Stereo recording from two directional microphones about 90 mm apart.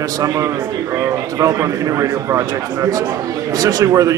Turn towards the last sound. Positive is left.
turn(degrees=-40)  # may be behind; listen again after turning